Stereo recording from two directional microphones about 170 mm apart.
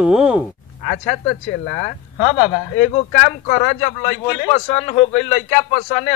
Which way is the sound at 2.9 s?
45° left (ahead or behind).